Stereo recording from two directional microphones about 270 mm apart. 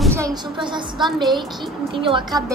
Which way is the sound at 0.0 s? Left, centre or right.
Centre.